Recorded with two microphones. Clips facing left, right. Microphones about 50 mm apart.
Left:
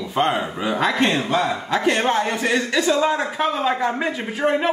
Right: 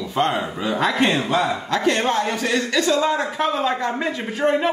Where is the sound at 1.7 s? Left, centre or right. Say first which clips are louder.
Left 1 dB; centre.